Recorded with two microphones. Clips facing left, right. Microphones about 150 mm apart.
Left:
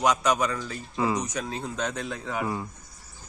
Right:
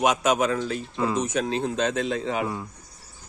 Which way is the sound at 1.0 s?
Centre (ahead or behind).